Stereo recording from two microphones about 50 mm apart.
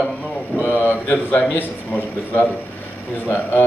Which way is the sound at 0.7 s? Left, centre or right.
Left.